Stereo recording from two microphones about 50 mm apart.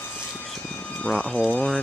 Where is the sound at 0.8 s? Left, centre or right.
Left.